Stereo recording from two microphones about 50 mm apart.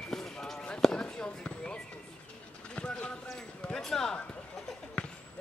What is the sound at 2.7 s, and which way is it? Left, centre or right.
Clip-clop, centre.